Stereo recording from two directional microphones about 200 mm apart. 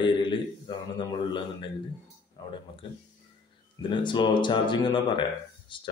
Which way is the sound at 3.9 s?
25° left (ahead or behind).